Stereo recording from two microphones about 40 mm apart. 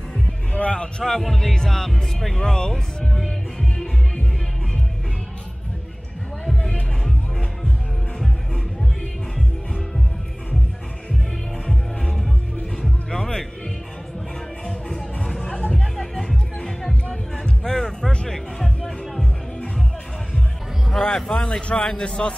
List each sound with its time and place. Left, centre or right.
0.5 s speech: left
1.0 s speech: centre
2.4 s music: centre
6.4 s music: centre
11.6 s music: centre
15.2 s music: centre
15.5 s music: left
15.8 s music: centre
21.0 s a man's voice: centre